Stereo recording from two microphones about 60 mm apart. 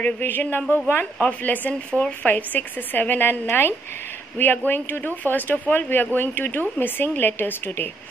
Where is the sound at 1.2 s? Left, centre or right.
Left.